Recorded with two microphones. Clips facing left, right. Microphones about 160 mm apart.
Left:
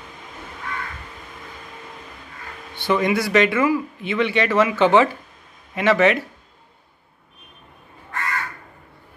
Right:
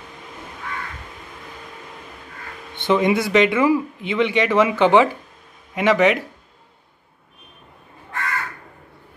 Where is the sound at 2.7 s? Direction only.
20° right (ahead or behind).